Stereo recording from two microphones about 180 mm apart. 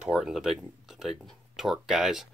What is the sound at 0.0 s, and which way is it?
Speech, 5° right (ahead or behind).